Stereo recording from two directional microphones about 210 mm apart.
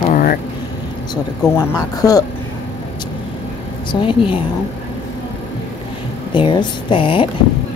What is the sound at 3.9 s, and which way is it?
Speech, 25° left (ahead or behind).